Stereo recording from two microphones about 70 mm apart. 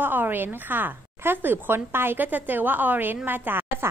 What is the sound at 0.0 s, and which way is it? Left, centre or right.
A woman's voice, right.